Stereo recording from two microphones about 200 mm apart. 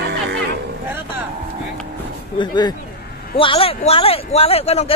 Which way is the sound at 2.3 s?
20° left (ahead or behind).